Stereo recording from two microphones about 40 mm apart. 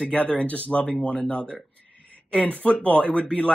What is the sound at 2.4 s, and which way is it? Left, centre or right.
Speech, left.